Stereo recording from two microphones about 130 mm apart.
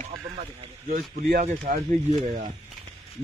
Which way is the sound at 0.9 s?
80° right.